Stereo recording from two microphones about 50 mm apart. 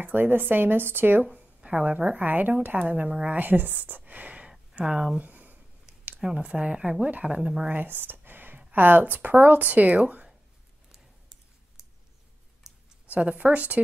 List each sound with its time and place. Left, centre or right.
0.0 s a woman's voice: right
1.2 s a woman's voice: right
5.2 s a sound: right
6.2 s speech: right
7.7 s a sound: right
8.7 s a woman's voice: right
12.7 s clicking: centre
13.0 s speech: right